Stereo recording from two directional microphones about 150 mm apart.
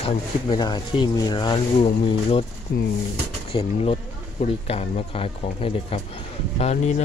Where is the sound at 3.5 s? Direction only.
40° left (ahead or behind).